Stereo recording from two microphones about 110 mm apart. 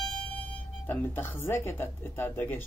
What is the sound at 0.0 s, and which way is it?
A woman's voice, 10° left (ahead or behind).